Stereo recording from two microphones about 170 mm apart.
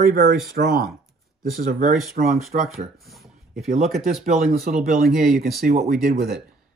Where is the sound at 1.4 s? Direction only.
50° right (ahead or behind).